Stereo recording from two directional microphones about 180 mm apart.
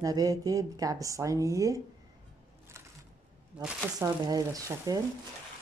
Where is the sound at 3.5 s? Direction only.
5° right (ahead or behind).